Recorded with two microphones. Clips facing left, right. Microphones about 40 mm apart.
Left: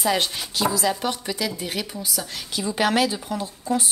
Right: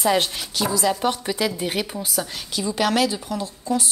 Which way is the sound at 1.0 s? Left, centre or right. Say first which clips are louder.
Right 4 dB; centre.